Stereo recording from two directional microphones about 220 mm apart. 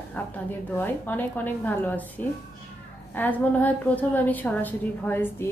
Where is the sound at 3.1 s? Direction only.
5° left (ahead or behind).